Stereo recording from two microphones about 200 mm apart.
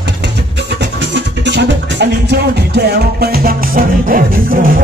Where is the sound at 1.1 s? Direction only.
60° right (ahead or behind).